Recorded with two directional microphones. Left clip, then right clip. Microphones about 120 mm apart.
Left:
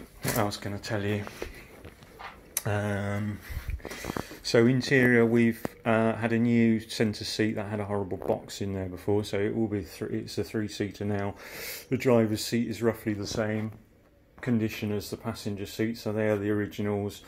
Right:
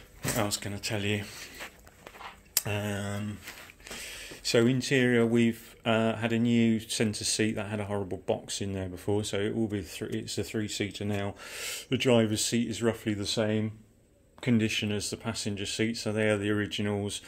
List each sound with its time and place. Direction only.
0.2 s speech: centre (ahead or behind)
2.6 s speech: 5° left (ahead or behind)
4.0 s speech: centre (ahead or behind)
13.1 s speech: 25° right (ahead or behind)
14.7 s speech: 10° right (ahead or behind)